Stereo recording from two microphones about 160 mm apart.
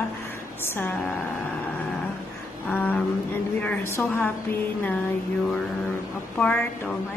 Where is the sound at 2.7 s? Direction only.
10° left (ahead or behind).